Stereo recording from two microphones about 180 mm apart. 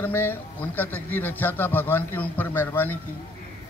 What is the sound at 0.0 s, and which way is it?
A man's voice, 10° left (ahead or behind).